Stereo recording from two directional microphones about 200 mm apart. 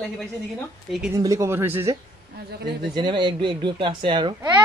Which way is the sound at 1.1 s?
15° right (ahead or behind).